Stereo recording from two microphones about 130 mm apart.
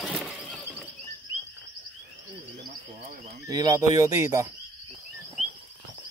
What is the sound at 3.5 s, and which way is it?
Speech, 30° right (ahead or behind).